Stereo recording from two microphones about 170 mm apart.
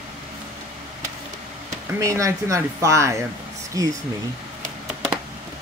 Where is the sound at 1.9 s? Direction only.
20° right (ahead or behind).